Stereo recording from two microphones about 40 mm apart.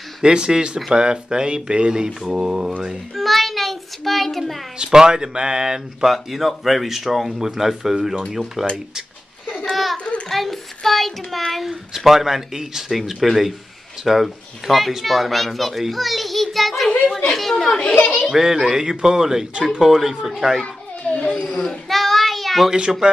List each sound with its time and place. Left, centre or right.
0.2 s speech: right
2.3 s a sound: centre
3.2 s child singing: centre
4.7 s speech: centre
6.0 s a child's voice: centre
7.3 s a sound: centre
10.3 s a child's voice: centre
11.6 s a child's voice: centre
17.9 s a child's voice: left
18.3 s a sound: centre
21.1 s baby cry: centre
21.5 s child singing: centre
21.9 s child singing: centre
22.7 s a sound: centre